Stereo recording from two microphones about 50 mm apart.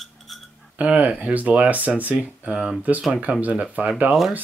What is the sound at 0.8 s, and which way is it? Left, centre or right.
Speech, right.